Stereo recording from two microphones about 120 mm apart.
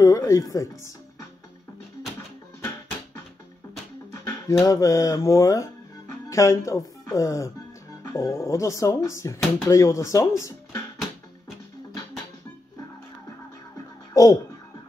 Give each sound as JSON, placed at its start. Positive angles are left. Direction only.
{"t": 0.0, "sound": "speech", "side_deg": 25}
{"t": 4.1, "sound": "speech", "side_deg": 25}
{"t": 14.2, "sound": "music", "side_deg": 25}